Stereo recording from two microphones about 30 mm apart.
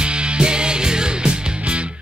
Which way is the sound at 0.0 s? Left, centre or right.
Right.